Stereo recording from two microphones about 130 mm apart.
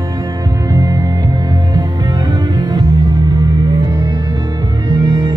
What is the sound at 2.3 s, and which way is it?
Music, 30° right (ahead or behind).